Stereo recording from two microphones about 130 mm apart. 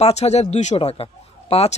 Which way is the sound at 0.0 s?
55° left (ahead or behind).